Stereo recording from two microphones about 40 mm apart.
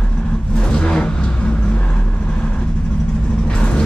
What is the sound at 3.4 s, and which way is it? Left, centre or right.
Vehicle, left.